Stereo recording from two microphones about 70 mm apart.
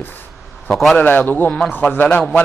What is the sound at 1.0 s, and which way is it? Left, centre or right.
A man's voice, left.